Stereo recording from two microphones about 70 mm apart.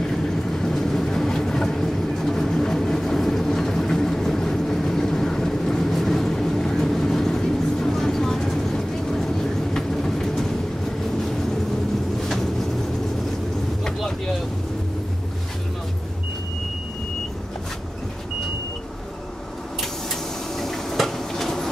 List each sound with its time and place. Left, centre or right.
0.0 s vehicle: centre
9.8 s train: centre
12.2 s vehicle: centre
13.8 s vehicle: centre
20.5 s a sound: centre